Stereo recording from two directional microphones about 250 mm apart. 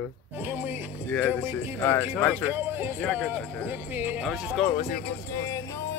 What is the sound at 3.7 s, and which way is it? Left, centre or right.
Speech, centre.